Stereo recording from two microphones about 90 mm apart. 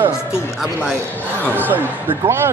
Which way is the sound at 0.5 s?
5° right (ahead or behind).